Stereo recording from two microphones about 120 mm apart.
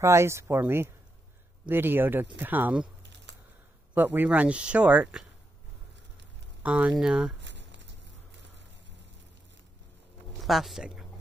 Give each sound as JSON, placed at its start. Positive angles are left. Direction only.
{"t": 0.0, "sound": "speech", "side_deg": -25}
{"t": 3.9, "sound": "speech", "side_deg": -15}
{"t": 6.6, "sound": "speech", "side_deg": -10}
{"t": 10.4, "sound": "speech", "side_deg": 0}